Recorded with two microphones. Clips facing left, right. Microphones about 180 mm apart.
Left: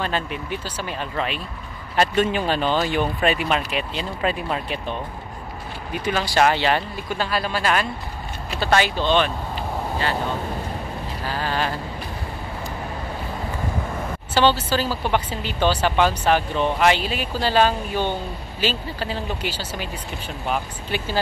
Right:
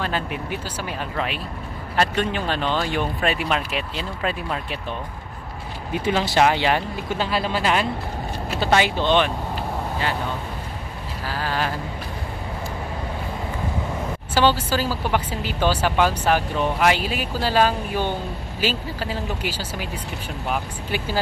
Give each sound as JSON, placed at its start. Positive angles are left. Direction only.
{"t": 0.0, "sound": "speech", "side_deg": -5}
{"t": 2.0, "sound": "speech", "side_deg": 5}
{"t": 5.9, "sound": "speech", "side_deg": -25}
{"t": 11.2, "sound": "speech", "side_deg": -5}
{"t": 14.3, "sound": "speech", "side_deg": -10}